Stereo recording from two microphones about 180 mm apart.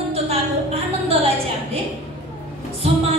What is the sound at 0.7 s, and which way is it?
Music, 35° right (ahead or behind).